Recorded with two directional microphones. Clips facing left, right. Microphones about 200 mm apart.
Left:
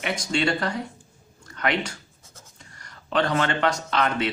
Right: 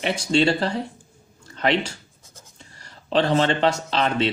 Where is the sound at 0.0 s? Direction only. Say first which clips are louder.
Right 5 dB; 30° right (ahead or behind).